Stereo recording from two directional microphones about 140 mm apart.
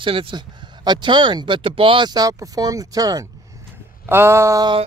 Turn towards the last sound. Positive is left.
turn(degrees=-25)  # may be behind; listen again after turning